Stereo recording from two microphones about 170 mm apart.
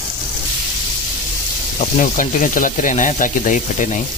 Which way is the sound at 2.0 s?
50° left (ahead or behind).